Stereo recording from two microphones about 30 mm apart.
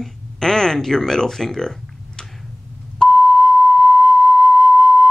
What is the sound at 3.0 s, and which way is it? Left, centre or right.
Beep, centre.